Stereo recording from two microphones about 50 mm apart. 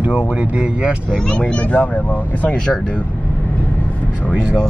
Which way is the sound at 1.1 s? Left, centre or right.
Centre.